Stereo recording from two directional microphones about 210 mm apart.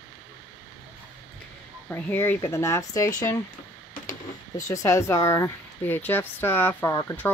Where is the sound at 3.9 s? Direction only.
40° left (ahead or behind).